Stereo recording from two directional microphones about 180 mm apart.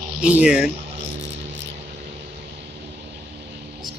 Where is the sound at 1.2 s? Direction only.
85° right.